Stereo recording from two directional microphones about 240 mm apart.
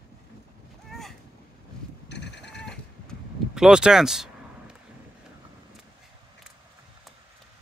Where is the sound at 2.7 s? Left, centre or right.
Centre.